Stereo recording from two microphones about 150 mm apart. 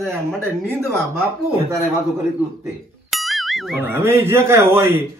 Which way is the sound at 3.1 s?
Centre (ahead or behind).